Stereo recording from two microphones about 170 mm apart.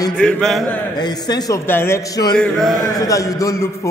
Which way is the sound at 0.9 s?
25° left (ahead or behind).